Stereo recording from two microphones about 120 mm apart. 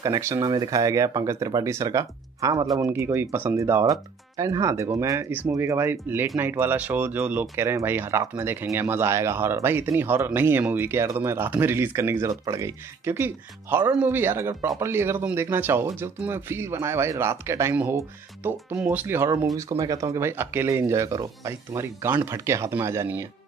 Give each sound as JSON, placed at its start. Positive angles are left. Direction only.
{"t": 0.0, "sound": "speech", "side_deg": -30}
{"t": 5.3, "sound": "speech", "side_deg": -15}